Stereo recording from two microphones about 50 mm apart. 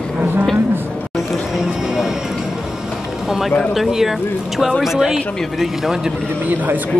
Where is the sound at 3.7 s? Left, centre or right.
Centre.